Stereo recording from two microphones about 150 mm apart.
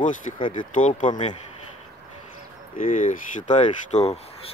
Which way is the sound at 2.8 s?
65° left (ahead or behind).